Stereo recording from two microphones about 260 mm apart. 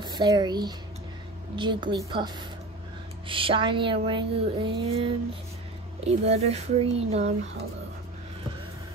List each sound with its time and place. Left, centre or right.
0.0 s a woman's voice: centre